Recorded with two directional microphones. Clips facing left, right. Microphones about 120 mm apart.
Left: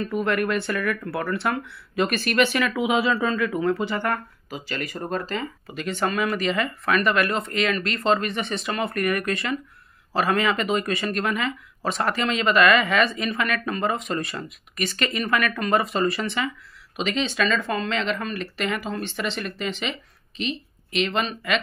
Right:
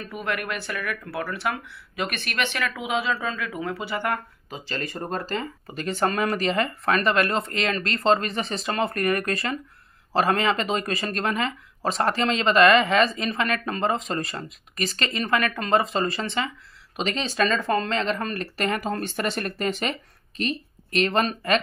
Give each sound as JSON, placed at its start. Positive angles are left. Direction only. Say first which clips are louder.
{"t": 0.0, "sound": "speech", "louder": "left 6 dB", "side_deg": -5}
{"t": 4.6, "sound": "speech", "louder": "left 1 dB", "side_deg": -30}